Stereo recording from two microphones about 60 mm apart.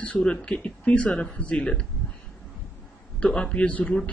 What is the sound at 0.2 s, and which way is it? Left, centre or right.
Speech, centre.